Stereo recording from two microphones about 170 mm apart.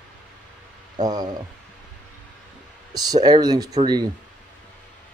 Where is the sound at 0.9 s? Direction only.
25° right (ahead or behind).